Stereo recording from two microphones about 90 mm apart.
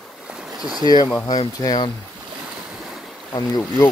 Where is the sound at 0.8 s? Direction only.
50° left (ahead or behind).